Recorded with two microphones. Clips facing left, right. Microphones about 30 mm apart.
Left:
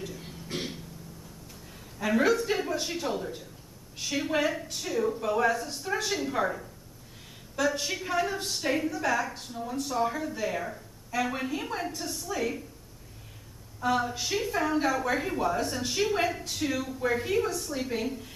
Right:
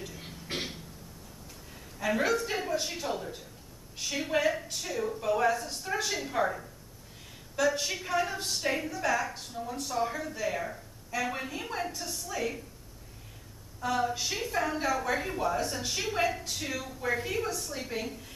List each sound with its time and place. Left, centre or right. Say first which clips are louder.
0.5 s a sound: even; right
2.0 s a woman's voice: left 3 dB; centre
13.7 s a woman's voice: left 2 dB; centre